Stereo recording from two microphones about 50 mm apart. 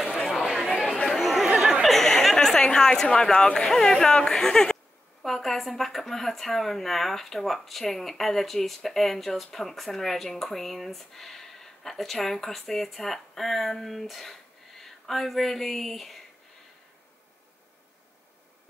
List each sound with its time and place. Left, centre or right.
0.4 s chatter: centre
0.8 s chatter: left
1.1 s chatter: centre
1.9 s a sound: centre
3.1 s speech: centre